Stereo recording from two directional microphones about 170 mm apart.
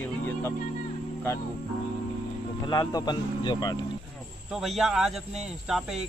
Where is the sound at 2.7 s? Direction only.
20° left (ahead or behind).